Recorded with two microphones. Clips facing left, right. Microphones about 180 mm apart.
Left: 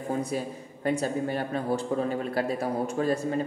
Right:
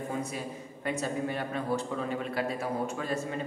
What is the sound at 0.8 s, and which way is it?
A woman's voice, 35° left (ahead or behind).